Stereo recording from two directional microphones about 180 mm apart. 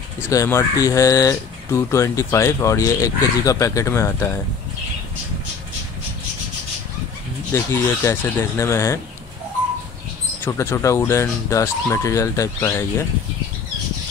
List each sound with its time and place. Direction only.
0.3 s speech: 15° left (ahead or behind)
7.5 s speech: 15° left (ahead or behind)
10.4 s speech: 15° left (ahead or behind)